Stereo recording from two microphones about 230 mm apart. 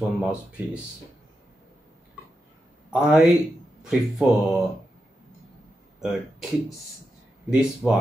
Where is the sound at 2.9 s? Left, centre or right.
Centre.